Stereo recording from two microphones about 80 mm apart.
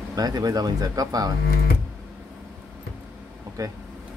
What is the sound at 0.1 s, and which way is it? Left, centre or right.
Speech, right.